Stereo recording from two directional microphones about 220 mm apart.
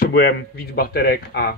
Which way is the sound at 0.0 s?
45° left (ahead or behind).